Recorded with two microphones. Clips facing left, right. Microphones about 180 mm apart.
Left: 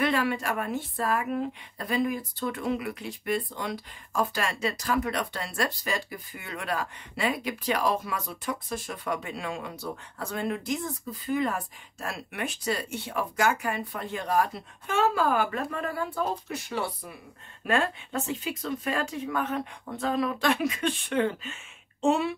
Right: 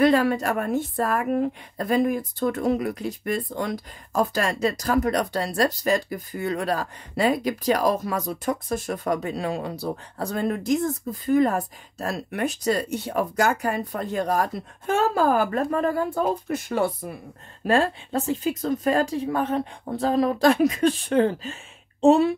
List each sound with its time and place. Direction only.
0.0 s a woman's voice: 40° right (ahead or behind)
17.6 s a woman's voice: 35° right (ahead or behind)